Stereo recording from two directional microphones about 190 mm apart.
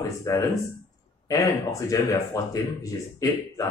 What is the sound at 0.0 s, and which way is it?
Speech, 20° left (ahead or behind).